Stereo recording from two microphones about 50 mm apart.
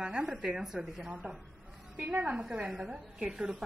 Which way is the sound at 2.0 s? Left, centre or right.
Right.